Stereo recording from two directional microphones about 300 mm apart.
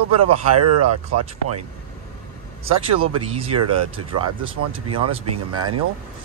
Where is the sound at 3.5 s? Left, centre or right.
Right.